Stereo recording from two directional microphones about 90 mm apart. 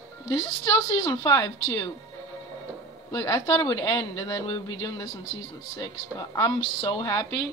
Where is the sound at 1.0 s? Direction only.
40° left (ahead or behind).